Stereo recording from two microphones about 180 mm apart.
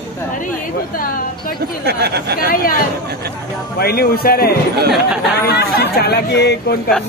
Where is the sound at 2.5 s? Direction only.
50° left (ahead or behind).